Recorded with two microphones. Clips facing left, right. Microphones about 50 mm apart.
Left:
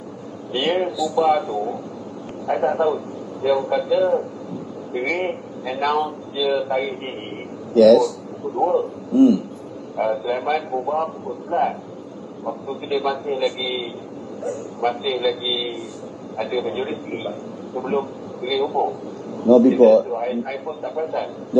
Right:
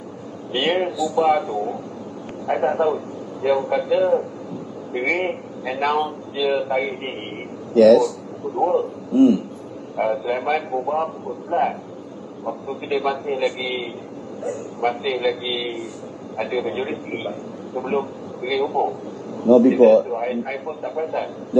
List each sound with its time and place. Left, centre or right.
0.5 s a man's voice: right
7.7 s speech: right
9.1 s a sound: right
9.9 s a man's voice: right
12.8 s a man's voice: right